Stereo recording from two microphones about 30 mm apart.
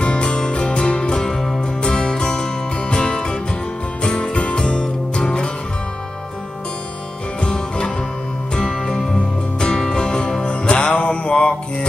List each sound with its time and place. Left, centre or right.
0.0 s music: left
1.2 s music: centre
1.9 s music: left
8.5 s music: left
10.4 s music: left